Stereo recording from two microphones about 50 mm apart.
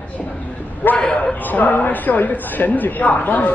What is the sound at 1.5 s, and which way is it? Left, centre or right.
A woman's voice, left.